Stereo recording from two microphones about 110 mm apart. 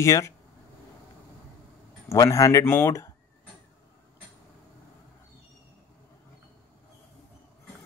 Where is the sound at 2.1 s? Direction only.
30° left (ahead or behind).